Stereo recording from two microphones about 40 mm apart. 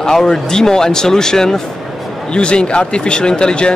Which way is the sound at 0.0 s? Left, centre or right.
Centre.